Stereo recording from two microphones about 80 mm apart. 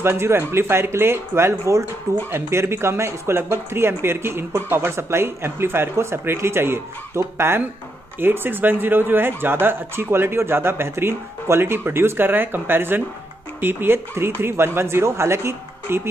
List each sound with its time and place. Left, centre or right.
0.0 s speech: right